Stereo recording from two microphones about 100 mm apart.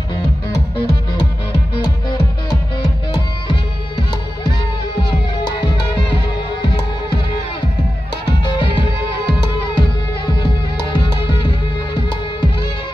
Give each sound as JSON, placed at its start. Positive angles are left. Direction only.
{"t": 0.7, "sound": "music", "side_deg": 45}
{"t": 5.4, "sound": "music", "side_deg": 45}
{"t": 8.3, "sound": "music", "side_deg": 50}